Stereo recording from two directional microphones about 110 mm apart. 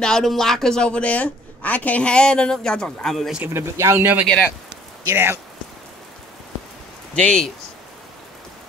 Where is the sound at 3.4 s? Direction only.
25° right (ahead or behind).